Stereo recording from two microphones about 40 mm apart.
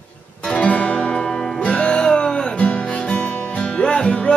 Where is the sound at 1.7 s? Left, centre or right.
Left.